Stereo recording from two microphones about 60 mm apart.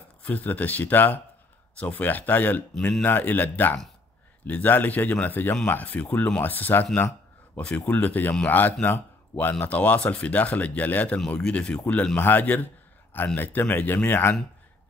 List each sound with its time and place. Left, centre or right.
0.2 s speech: left
11.1 s speech: centre
12.2 s speech: left